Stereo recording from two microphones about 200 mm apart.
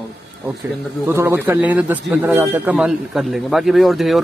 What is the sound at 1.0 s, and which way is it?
Speech, 10° right (ahead or behind).